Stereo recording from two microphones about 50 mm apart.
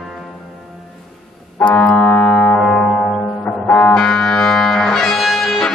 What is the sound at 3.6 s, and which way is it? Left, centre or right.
Music, left.